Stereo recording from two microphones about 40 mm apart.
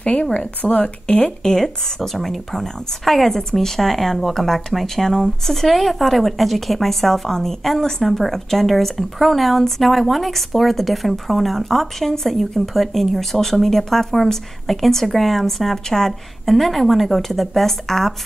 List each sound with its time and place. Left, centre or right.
0.0 s speech: left
1.2 s speech: centre
2.0 s speech: centre